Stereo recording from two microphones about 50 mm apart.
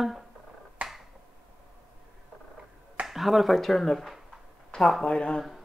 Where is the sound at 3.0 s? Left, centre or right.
Centre.